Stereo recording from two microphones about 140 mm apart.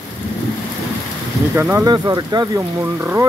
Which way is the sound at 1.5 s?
15° right (ahead or behind).